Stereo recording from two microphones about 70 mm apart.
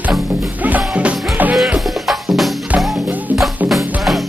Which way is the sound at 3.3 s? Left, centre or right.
Right.